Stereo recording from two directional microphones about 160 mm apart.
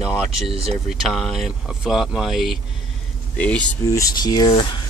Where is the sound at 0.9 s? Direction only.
Centre (ahead or behind).